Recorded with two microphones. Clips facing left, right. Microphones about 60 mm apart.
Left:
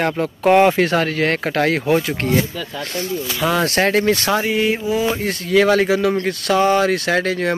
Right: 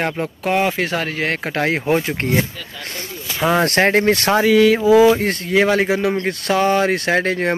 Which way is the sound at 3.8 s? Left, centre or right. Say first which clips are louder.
Even; right.